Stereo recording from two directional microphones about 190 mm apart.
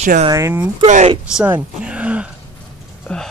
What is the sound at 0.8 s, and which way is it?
Speech, 35° right (ahead or behind).